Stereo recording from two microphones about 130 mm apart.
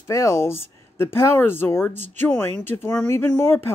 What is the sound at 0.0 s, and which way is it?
Speech, 20° left (ahead or behind).